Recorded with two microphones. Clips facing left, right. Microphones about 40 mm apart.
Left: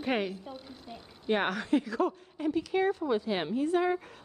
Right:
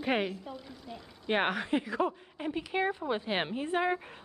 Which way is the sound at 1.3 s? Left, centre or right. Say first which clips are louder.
Left 1 dB; right.